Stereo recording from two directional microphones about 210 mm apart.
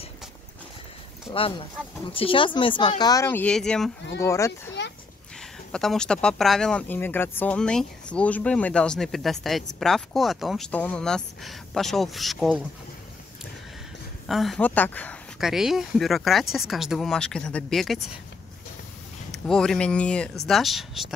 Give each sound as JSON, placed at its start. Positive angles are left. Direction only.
{"t": 1.3, "sound": "speech", "side_deg": 25}
{"t": 4.2, "sound": "a child's voice", "side_deg": 15}
{"t": 5.7, "sound": "speech", "side_deg": 5}
{"t": 14.2, "sound": "speech", "side_deg": 0}
{"t": 19.3, "sound": "speech", "side_deg": 0}